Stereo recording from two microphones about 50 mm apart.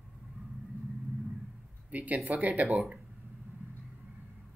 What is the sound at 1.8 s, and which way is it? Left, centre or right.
Speech, right.